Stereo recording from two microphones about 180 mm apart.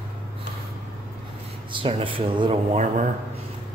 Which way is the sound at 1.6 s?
30° right (ahead or behind).